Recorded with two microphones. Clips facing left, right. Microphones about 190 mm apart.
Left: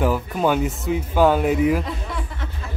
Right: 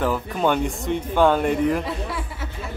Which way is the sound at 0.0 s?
5° left (ahead or behind).